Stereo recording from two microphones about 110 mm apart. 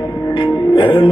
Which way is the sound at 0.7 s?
55° left (ahead or behind).